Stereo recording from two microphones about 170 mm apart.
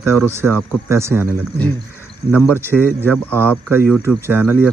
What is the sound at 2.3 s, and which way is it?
Speech, 10° left (ahead or behind).